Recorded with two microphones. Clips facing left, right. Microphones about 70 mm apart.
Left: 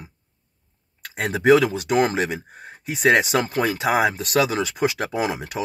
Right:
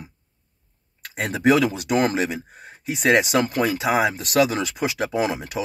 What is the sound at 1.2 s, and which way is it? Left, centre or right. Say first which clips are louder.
Speech: left 2 dB; left.